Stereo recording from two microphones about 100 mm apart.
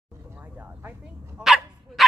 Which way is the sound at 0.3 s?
15° right (ahead or behind).